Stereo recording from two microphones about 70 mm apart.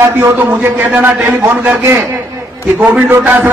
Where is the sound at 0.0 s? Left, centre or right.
Right.